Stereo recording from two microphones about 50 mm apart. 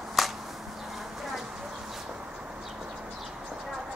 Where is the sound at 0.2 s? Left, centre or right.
Centre.